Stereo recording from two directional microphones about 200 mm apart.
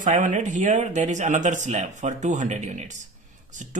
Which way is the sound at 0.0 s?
40° right (ahead or behind).